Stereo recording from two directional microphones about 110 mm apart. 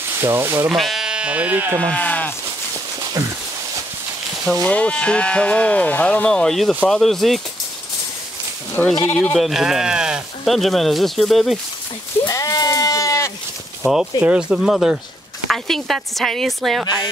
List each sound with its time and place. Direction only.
0.2 s speech: 20° right (ahead or behind)
0.7 s speech: centre (ahead or behind)
1.8 s speech: 10° left (ahead or behind)
3.2 s speech: 25° right (ahead or behind)
4.5 s speech: 10° left (ahead or behind)
8.8 s speech: 10° left (ahead or behind)
9.4 s speech: 5° right (ahead or behind)
12.3 s sheep: 30° left (ahead or behind)
14.2 s speech: 10° right (ahead or behind)
16.8 s speech: 40° left (ahead or behind)